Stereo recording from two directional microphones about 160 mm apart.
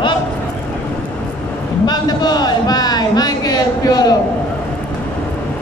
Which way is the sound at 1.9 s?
25° left (ahead or behind).